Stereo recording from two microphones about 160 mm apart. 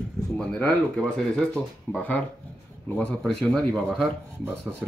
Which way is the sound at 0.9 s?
5° left (ahead or behind).